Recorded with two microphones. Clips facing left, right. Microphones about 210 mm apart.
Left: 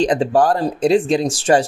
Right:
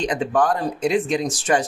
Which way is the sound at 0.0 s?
30° left (ahead or behind).